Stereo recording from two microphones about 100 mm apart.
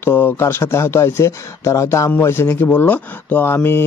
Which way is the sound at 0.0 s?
20° left (ahead or behind).